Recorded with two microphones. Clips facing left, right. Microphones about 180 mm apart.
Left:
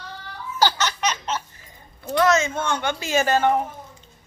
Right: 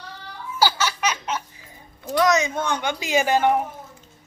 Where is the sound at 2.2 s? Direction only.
15° right (ahead or behind).